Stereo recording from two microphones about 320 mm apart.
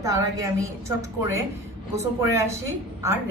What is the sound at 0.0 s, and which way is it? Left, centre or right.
A woman's voice, centre.